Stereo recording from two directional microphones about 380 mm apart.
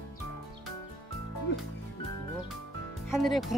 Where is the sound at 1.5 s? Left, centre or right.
Left.